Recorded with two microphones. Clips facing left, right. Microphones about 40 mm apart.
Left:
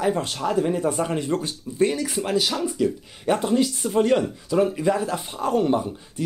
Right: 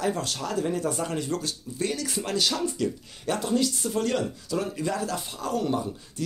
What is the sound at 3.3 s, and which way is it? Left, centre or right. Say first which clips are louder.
Speech: left 3 dB; left.